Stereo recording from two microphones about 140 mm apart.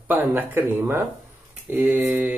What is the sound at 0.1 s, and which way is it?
Speech, 15° right (ahead or behind).